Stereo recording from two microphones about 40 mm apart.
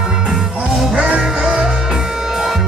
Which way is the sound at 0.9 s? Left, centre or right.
Right.